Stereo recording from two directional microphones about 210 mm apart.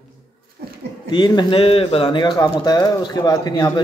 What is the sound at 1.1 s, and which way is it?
A man's voice, 20° left (ahead or behind).